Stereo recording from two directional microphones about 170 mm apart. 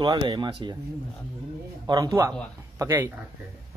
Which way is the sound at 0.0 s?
25° right (ahead or behind).